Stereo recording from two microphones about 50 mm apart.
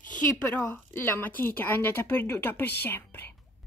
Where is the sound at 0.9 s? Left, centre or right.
Left.